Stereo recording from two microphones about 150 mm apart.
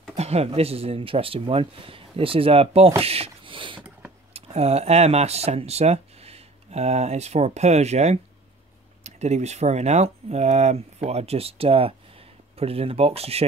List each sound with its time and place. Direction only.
0.1 s speech: 45° right (ahead or behind)
3.0 s a sound: 40° right (ahead or behind)
4.3 s speech: 45° right (ahead or behind)